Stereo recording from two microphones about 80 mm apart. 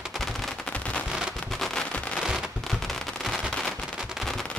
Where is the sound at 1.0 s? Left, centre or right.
Centre.